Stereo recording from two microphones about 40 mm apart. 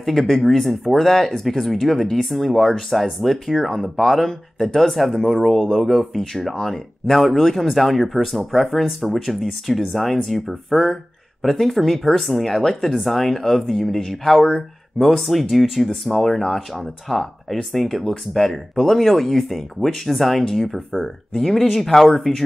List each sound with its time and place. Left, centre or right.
0.0 s speech: centre